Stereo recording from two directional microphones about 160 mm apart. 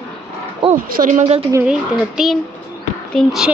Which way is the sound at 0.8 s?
60° right (ahead or behind).